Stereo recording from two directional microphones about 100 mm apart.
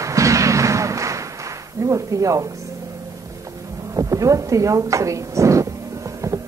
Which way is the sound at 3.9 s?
35° right (ahead or behind).